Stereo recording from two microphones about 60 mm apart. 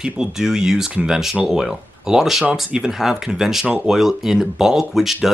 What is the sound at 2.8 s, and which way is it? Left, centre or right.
Speech, centre.